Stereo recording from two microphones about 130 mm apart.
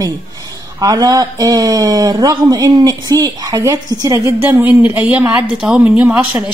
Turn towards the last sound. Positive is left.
turn(degrees=-10)  # may be behind; listen again after turning